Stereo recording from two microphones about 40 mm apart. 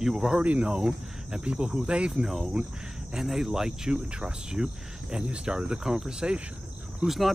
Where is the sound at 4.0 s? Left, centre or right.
Right.